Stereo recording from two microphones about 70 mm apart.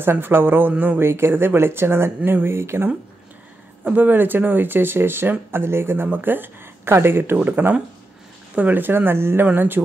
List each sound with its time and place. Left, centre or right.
0.0 s speech: right
3.8 s speech: right
7.3 s speech: right